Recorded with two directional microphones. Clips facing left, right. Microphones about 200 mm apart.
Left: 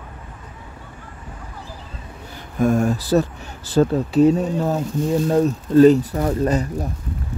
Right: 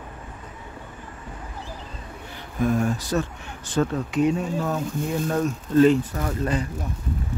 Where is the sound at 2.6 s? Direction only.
45° left (ahead or behind).